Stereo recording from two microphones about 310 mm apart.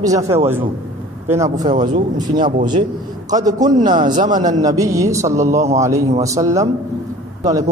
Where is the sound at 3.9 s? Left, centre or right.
Right.